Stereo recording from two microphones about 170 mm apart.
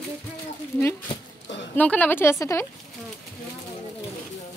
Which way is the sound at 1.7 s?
10° left (ahead or behind).